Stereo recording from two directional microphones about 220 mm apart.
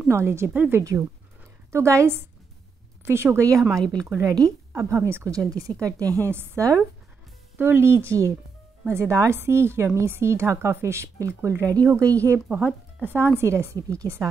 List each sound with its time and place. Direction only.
0.1 s a woman's voice: 10° right (ahead or behind)